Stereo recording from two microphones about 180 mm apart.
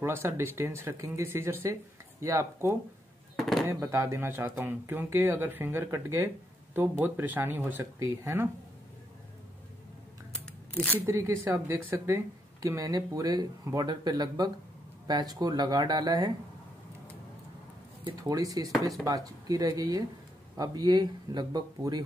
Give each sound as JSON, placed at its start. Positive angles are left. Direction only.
{"t": 0.0, "sound": "speech", "side_deg": -15}
{"t": 3.3, "sound": "a sound", "side_deg": 0}
{"t": 3.6, "sound": "speech", "side_deg": -15}
{"t": 11.0, "sound": "speech", "side_deg": -15}
{"t": 18.0, "sound": "speech", "side_deg": -20}